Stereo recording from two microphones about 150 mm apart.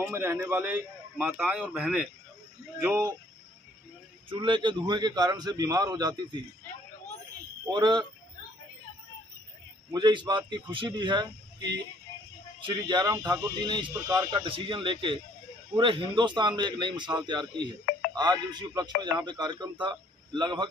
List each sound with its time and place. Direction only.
0.0 s a man's voice: 15° right (ahead or behind)
2.8 s a man's voice: 15° right (ahead or behind)
4.3 s a man's voice: 30° right (ahead or behind)
7.6 s a man's voice: 30° right (ahead or behind)
9.9 s a man's voice: 30° right (ahead or behind)
12.6 s a man's voice: 30° right (ahead or behind)